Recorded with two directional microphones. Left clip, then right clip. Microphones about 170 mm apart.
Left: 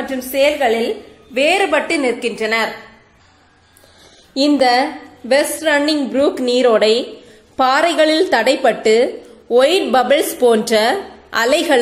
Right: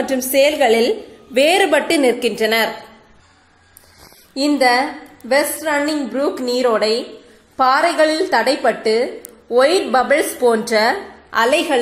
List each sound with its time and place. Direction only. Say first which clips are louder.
0.0 s a woman's voice: right 1 dB; 25° right (ahead or behind)
4.5 s a woman's voice: left 1 dB; 10° left (ahead or behind)